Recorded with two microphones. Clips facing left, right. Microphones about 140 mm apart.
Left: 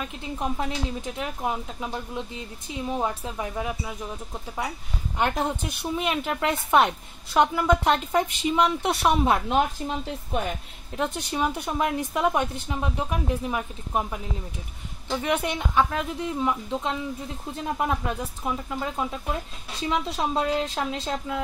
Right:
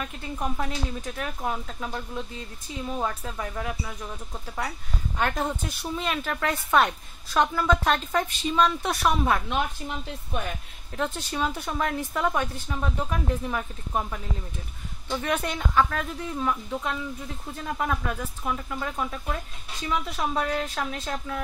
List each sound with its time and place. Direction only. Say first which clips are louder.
0.0 s a woman's voice: left 1 dB; 20° left (ahead or behind)
11.0 s speech: left 2 dB; 15° left (ahead or behind)